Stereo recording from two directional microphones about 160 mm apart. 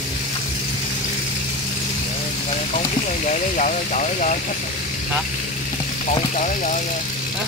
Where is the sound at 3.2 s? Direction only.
50° left (ahead or behind).